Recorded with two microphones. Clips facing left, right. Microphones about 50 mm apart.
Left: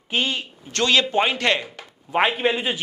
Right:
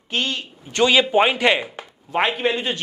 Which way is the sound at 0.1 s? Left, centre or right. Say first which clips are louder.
Left 1 dB; centre.